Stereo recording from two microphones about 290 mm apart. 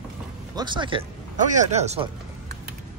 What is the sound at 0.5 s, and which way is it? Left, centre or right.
Speech, centre.